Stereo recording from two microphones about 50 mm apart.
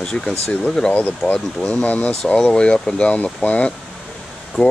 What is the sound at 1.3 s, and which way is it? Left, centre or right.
Speech, left.